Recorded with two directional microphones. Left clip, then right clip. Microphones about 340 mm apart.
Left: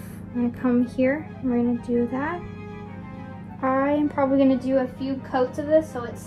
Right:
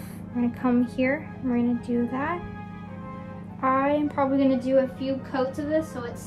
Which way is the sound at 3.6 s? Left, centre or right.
Centre.